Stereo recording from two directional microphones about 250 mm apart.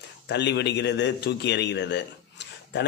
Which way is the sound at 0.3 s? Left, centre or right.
Left.